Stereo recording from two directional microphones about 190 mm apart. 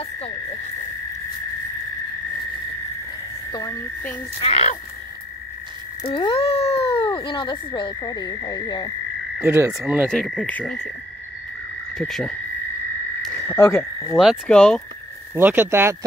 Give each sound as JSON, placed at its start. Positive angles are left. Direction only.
{"t": 3.5, "sound": "speech", "side_deg": 10}
{"t": 4.4, "sound": "speech", "side_deg": 30}
{"t": 6.0, "sound": "speech", "side_deg": 25}
{"t": 9.4, "sound": "speech", "side_deg": -15}
{"t": 10.0, "sound": "frog", "side_deg": 5}
{"t": 12.0, "sound": "frog", "side_deg": 0}
{"t": 14.1, "sound": "frog", "side_deg": 0}
{"t": 15.3, "sound": "speech", "side_deg": -10}